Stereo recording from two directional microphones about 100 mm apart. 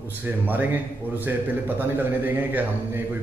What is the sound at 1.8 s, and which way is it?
A man's voice, 20° right (ahead or behind).